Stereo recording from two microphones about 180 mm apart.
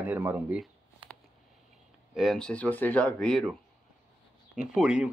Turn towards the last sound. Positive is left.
turn(degrees=-5)  # may be behind; listen again after turning